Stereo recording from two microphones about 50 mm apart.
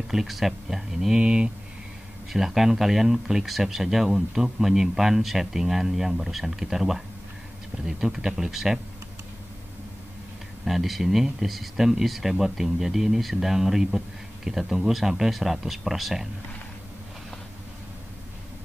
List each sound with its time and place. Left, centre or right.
0.1 s speech: centre
1.2 s speech: centre
2.3 s speech: centre
10.6 s speech: centre